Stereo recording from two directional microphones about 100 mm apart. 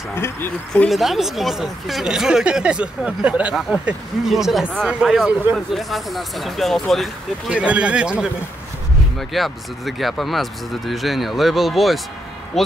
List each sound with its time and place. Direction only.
0.1 s speech: 25° left (ahead or behind)
0.8 s speech: centre (ahead or behind)
7.4 s speech: 10° right (ahead or behind)
9.3 s speech: centre (ahead or behind)